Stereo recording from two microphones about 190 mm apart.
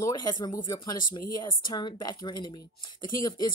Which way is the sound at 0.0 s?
20° left (ahead or behind).